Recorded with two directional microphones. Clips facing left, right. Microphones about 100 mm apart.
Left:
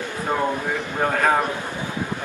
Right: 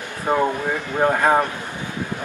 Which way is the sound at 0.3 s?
15° right (ahead or behind).